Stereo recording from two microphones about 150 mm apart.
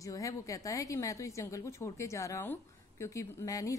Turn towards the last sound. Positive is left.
turn(degrees=25)  # may be behind; listen again after turning